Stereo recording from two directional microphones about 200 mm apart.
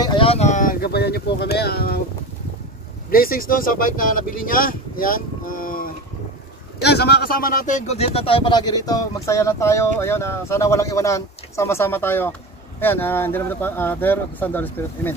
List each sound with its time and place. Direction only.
0.0 s a sound: 25° left (ahead or behind); by 2.0 s 50° left (ahead or behind)
3.1 s speech: 45° left (ahead or behind)
6.8 s speech: 55° left (ahead or behind); by 15.1 s 10° left (ahead or behind)